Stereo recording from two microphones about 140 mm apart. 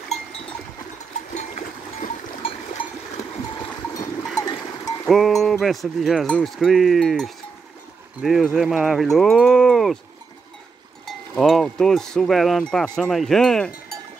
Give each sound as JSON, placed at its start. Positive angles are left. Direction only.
{"t": 1.3, "sound": "a sound", "side_deg": 60}
{"t": 2.4, "sound": "a sound", "side_deg": 40}
{"t": 4.4, "sound": "cowbell", "side_deg": 25}
{"t": 5.0, "sound": "cowbell", "side_deg": 0}
{"t": 6.2, "sound": "speech", "side_deg": 5}
{"t": 11.1, "sound": "cowbell", "side_deg": 0}
{"t": 13.1, "sound": "speech", "side_deg": 0}